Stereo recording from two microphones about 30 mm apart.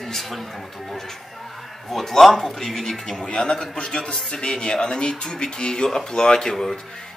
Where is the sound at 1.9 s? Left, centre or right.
Centre.